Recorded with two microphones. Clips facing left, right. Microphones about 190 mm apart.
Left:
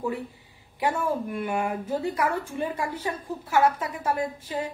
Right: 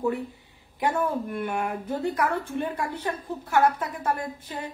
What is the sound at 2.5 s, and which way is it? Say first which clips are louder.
Speech: even; 55° right (ahead or behind).